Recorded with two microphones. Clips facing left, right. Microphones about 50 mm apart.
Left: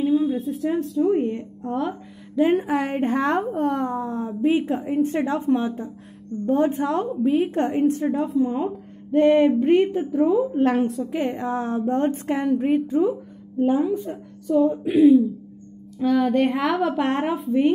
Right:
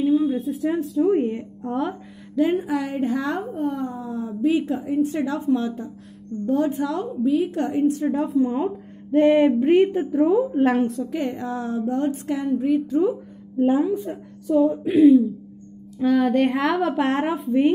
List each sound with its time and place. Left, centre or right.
0.0 s speech: centre
2.5 s a woman's voice: left
3.3 s speech: left
4.0 s a woman's voice: left
8.1 s a woman's voice: centre
11.1 s a woman's voice: left
13.6 s a woman's voice: centre